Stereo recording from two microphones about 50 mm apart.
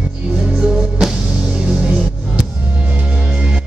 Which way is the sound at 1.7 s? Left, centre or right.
Right.